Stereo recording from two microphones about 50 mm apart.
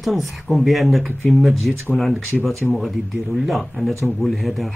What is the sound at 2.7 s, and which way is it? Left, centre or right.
Speech, centre.